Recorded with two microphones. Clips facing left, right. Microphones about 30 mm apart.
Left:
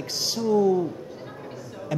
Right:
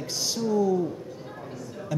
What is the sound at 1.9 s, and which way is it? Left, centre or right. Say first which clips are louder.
Speech: left 1 dB; left.